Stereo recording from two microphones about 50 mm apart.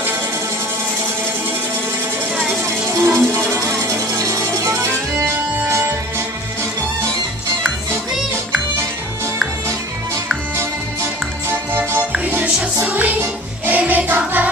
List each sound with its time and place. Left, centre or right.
2.6 s music: right
3.5 s music: right
12.8 s music: right